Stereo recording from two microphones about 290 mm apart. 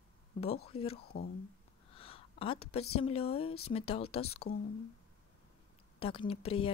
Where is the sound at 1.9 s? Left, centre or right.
Centre.